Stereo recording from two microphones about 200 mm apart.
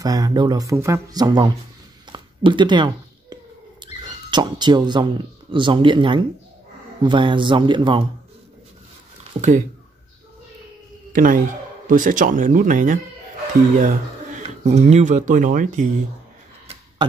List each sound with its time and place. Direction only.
0.0 s speech: 20° right (ahead or behind)
2.0 s a sound: 25° right (ahead or behind)
3.8 s speech: 20° right (ahead or behind)
11.1 s speech: 45° right (ahead or behind)